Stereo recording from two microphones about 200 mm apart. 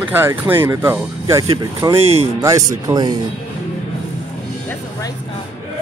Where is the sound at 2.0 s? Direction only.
30° right (ahead or behind).